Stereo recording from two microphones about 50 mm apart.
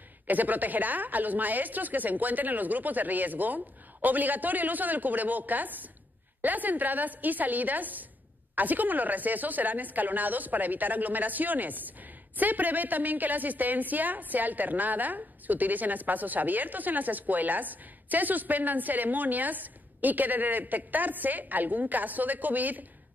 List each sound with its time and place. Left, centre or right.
0.3 s a woman's voice: right